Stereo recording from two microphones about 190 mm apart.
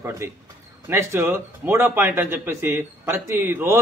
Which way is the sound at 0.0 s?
15° right (ahead or behind).